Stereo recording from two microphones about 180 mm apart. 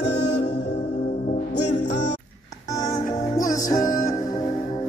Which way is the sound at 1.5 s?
70° left (ahead or behind).